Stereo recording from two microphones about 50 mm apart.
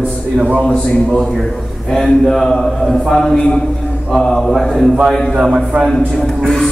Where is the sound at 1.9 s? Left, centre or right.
Centre.